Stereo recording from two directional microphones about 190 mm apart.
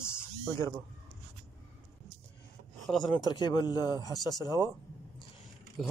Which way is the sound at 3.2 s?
20° left (ahead or behind).